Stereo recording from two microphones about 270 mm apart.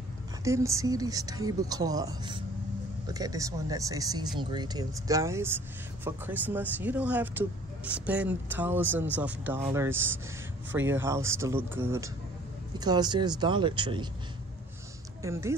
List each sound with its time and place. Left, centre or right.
0.4 s speech: centre
15.2 s speech: centre